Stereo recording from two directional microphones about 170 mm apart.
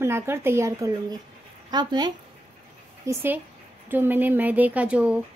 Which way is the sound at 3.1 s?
10° right (ahead or behind).